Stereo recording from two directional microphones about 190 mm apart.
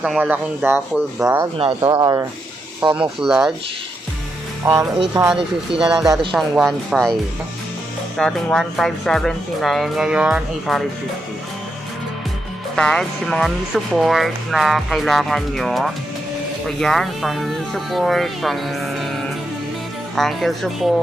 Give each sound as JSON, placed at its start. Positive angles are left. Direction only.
{"t": 0.0, "sound": "speech", "side_deg": -5}
{"t": 1.6, "sound": "speech", "side_deg": -20}
{"t": 2.8, "sound": "speech", "side_deg": -5}
{"t": 4.6, "sound": "speech", "side_deg": -10}
{"t": 8.2, "sound": "speech", "side_deg": 5}
{"t": 12.7, "sound": "speech", "side_deg": 5}
{"t": 20.2, "sound": "speech", "side_deg": 0}